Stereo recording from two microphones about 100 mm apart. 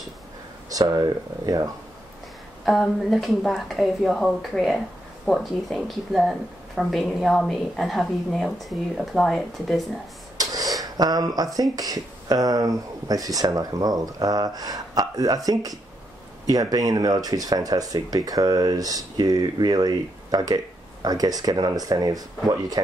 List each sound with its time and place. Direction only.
0.7 s speech: 40° right (ahead or behind)
2.6 s speech: centre (ahead or behind)
10.3 s a sound: 35° right (ahead or behind)
10.8 s speech: 40° right (ahead or behind)